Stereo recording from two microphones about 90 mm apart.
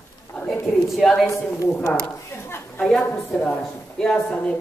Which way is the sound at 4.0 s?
5° left (ahead or behind).